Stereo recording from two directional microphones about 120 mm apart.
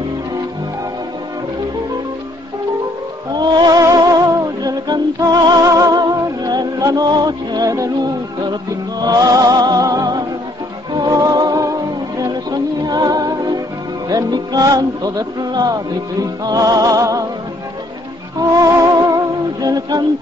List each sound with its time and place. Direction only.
3.3 s music: 35° right (ahead or behind)
18.6 s music: 30° right (ahead or behind)